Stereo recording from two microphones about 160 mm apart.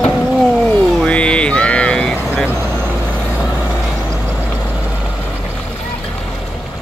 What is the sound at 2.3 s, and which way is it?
Vehicle, 10° right (ahead or behind).